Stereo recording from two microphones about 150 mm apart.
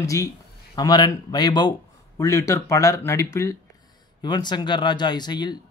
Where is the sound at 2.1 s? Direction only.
20° left (ahead or behind).